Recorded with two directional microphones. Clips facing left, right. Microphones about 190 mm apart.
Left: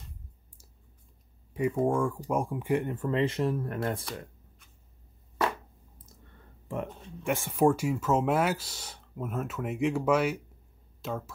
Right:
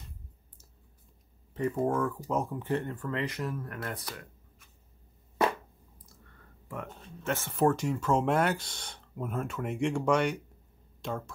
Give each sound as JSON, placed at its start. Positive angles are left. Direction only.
{"t": 1.5, "sound": "a sound", "side_deg": 10}
{"t": 2.0, "sound": "speech", "side_deg": 10}
{"t": 6.0, "sound": "clicking", "side_deg": 20}
{"t": 6.9, "sound": "speech", "side_deg": 10}